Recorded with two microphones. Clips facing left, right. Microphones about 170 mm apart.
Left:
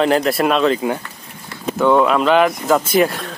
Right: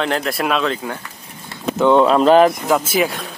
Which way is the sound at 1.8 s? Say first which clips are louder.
Right 1 dB; 20° right (ahead or behind).